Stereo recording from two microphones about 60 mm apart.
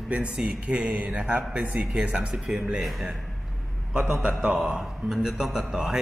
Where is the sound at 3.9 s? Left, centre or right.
Centre.